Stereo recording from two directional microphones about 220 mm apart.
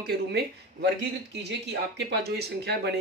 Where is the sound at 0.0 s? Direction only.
50° right (ahead or behind).